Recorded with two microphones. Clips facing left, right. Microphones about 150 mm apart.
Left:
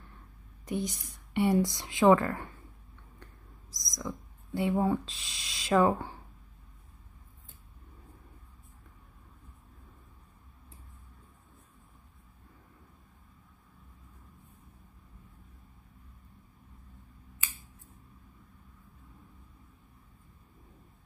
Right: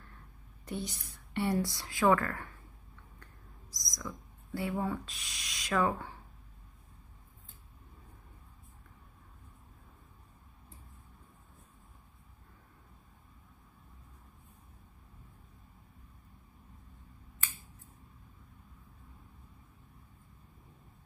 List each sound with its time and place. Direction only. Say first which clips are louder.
0.7 s speech: left 5 dB; 15° left (ahead or behind)
3.7 s speech: left 5 dB; 25° left (ahead or behind)